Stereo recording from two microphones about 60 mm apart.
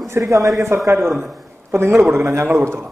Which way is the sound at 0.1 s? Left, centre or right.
Right.